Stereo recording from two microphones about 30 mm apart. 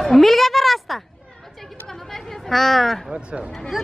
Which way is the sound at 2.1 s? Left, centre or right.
Centre.